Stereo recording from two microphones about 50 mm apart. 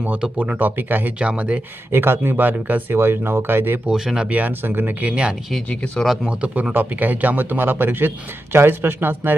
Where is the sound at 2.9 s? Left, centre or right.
Right.